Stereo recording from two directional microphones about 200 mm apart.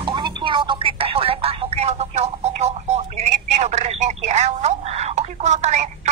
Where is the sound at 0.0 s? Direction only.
25° right (ahead or behind).